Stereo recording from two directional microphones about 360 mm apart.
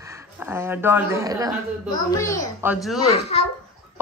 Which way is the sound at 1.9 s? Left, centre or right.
Centre.